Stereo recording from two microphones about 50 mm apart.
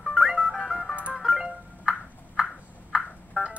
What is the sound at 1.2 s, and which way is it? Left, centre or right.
Music, centre.